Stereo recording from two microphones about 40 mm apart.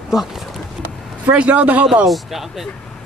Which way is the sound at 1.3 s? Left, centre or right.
Right.